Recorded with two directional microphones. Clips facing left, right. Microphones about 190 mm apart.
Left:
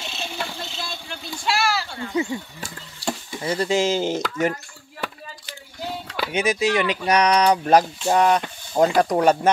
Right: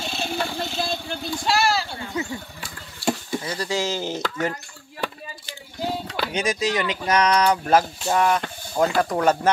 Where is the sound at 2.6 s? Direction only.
45° left (ahead or behind).